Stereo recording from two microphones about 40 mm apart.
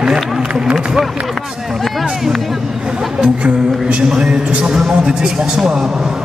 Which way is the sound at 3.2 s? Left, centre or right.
Right.